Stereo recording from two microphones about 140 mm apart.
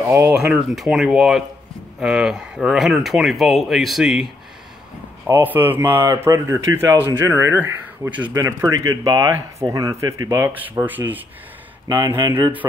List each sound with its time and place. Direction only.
0.3 s speech: 5° right (ahead or behind)
5.3 s speech: 15° right (ahead or behind)